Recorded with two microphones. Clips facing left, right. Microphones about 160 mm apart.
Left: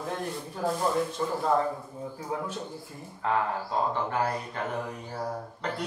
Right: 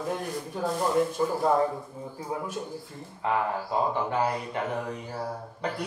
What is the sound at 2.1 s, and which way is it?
Speech, 10° right (ahead or behind).